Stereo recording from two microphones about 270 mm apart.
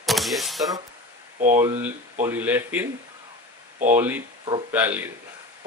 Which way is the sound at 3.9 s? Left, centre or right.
Centre.